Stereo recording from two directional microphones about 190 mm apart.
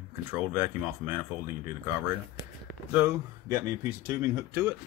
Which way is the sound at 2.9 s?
15° right (ahead or behind).